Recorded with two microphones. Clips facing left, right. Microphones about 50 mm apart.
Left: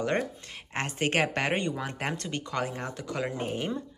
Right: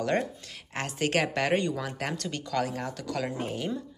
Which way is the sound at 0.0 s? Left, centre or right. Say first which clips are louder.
Right 1 dB; left.